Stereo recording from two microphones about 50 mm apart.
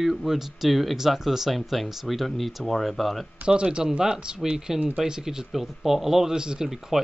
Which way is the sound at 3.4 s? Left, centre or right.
Centre.